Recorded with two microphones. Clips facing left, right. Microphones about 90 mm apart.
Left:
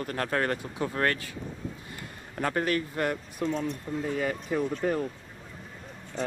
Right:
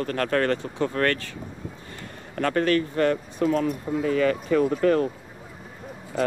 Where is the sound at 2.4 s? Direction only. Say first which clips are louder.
Right 6 dB; 15° left (ahead or behind).